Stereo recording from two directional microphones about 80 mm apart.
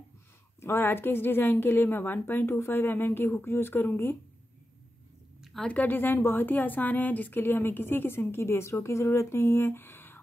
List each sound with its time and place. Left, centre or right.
0.6 s a woman's voice: left
5.4 s a sound: centre
5.7 s a woman's voice: left